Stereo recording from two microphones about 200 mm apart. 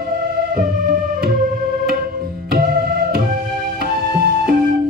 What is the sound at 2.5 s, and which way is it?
Music, 50° right (ahead or behind).